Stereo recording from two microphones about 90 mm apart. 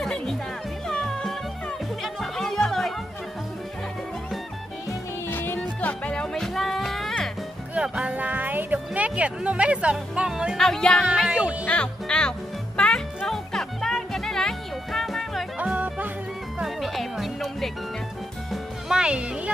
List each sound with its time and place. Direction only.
0.0 s music: 5° left (ahead or behind)
5.3 s music: 25° left (ahead or behind); by 7.2 s 5° left (ahead or behind)
7.7 s music: 10° right (ahead or behind)
8.7 s speech: 15° right (ahead or behind)
10.6 s music: 5° left (ahead or behind)
11.2 s music: 10° right (ahead or behind)
11.6 s music: 15° left (ahead or behind)
15.6 s music: 15° right (ahead or behind)
16.5 s music: centre (ahead or behind)